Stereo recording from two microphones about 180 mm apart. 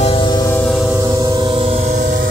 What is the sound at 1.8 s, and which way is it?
Train, 45° right (ahead or behind).